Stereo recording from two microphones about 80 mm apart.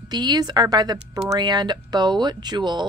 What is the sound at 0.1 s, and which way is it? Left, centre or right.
Speech, right.